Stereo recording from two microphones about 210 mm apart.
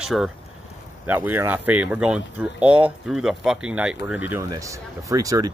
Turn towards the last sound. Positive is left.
turn(degrees=-15)  # may be behind; listen again after turning